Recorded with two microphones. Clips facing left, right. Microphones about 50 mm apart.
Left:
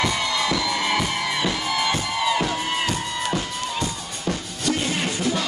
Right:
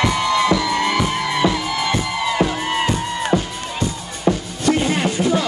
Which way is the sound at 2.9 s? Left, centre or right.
Right.